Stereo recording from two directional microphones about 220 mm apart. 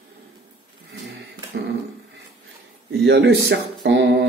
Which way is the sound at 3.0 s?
50° right (ahead or behind).